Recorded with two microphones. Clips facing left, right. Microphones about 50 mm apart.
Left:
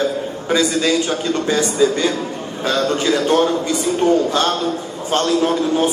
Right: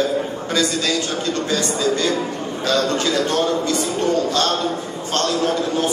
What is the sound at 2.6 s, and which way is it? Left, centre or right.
A man's voice, centre.